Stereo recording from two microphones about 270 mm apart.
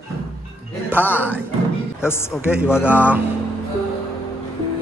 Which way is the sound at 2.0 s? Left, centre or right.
Centre.